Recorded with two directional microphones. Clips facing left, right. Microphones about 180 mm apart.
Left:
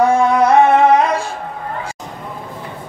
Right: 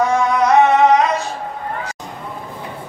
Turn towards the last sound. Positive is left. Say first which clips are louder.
# left 1 dB
turn(degrees=30)  # may be behind; listen again after turning